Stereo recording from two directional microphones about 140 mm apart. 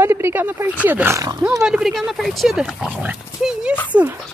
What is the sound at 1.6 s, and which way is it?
Speech, 5° right (ahead or behind).